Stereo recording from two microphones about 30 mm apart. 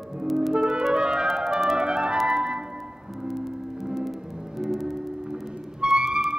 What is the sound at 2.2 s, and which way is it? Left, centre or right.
Music, right.